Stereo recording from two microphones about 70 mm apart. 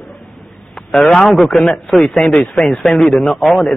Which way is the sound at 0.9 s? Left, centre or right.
Centre.